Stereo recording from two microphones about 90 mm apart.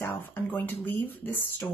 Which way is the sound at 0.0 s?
20° left (ahead or behind).